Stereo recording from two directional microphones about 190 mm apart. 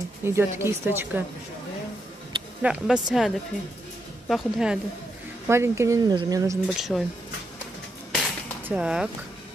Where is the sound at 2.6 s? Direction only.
5° right (ahead or behind).